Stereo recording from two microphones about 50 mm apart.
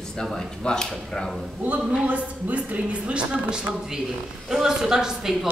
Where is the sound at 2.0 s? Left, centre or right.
Right.